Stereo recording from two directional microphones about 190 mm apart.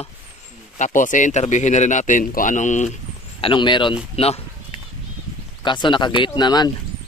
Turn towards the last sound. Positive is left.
turn(degrees=20)  # may be behind; listen again after turning